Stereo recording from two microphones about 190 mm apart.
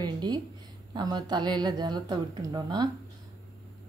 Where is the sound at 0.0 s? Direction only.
20° right (ahead or behind).